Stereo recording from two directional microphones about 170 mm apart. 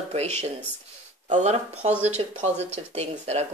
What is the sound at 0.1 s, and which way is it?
Speech, 35° right (ahead or behind).